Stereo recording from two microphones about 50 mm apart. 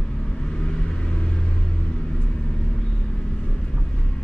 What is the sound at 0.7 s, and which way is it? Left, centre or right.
Vehicle, centre.